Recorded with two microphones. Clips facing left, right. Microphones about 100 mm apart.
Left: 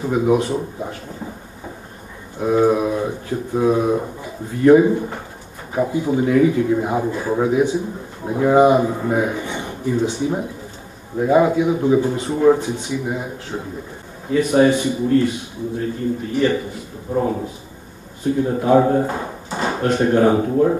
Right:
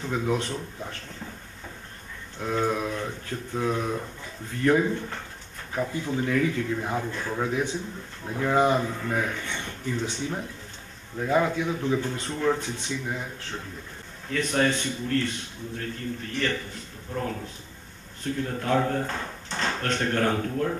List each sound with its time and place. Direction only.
0.0 s a man's voice: 15° left (ahead or behind)
2.3 s a man's voice: 15° left (ahead or behind)